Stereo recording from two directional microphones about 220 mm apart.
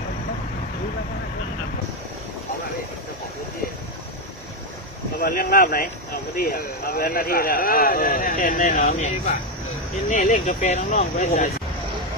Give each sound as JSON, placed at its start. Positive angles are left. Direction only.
{"t": 5.2, "sound": "speech", "side_deg": 40}